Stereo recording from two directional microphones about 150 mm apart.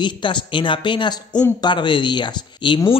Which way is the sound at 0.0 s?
30° left (ahead or behind).